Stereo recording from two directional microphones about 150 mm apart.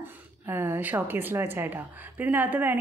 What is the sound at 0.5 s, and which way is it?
A woman's voice, 15° right (ahead or behind).